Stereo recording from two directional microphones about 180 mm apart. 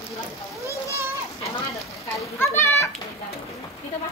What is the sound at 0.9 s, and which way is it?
Children playing, 15° right (ahead or behind).